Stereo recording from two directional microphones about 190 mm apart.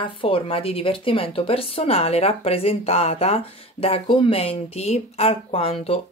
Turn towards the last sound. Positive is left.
turn(degrees=30)  # may be behind; listen again after turning